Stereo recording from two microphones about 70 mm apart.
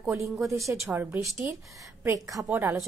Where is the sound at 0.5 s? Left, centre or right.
Right.